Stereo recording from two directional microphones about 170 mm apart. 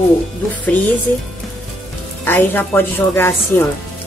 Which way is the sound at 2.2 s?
10° left (ahead or behind).